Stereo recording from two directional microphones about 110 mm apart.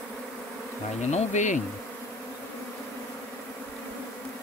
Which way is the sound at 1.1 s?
90° left.